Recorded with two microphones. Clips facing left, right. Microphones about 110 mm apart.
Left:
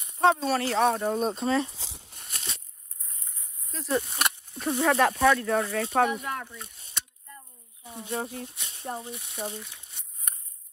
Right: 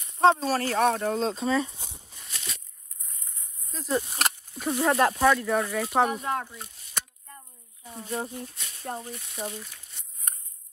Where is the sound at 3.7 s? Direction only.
20° right (ahead or behind).